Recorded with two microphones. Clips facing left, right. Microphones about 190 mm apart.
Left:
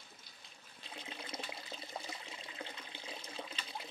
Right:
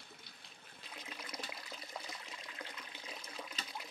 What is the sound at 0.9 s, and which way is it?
Water, 25° left (ahead or behind).